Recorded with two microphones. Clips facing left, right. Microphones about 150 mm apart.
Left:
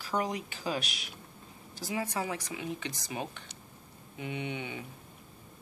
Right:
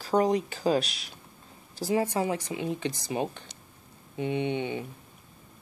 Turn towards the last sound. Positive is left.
turn(degrees=-30)  # may be behind; listen again after turning